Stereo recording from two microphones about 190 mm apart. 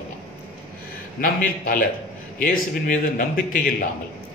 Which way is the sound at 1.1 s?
45° left (ahead or behind).